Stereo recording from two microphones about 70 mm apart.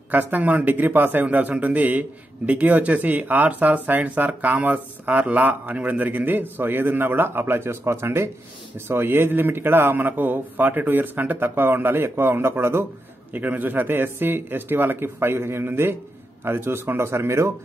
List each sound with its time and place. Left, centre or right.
0.1 s a man's voice: right
13.3 s speech: right